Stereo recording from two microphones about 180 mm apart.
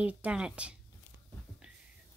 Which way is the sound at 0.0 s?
5° right (ahead or behind).